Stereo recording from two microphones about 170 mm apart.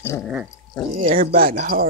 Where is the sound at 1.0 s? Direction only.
50° right (ahead or behind).